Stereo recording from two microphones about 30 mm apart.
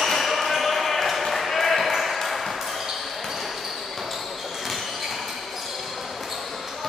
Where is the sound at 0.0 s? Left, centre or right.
Centre.